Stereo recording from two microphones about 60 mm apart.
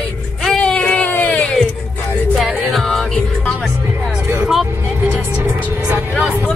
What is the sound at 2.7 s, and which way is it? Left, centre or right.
Music, centre.